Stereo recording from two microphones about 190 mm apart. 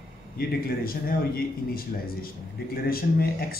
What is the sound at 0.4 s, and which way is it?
A man's voice, 50° left (ahead or behind).